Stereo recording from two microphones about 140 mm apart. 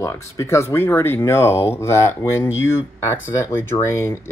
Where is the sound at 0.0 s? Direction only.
20° left (ahead or behind).